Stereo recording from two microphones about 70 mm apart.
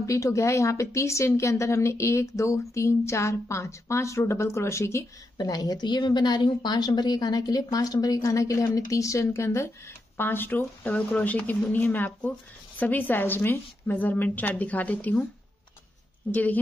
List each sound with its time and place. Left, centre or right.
0.0 s speech: left
5.4 s a woman's voice: left
10.1 s speech: left
10.8 s speech: centre